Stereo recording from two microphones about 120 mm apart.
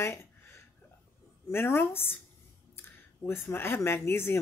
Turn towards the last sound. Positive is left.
turn(degrees=20)  # may be behind; listen again after turning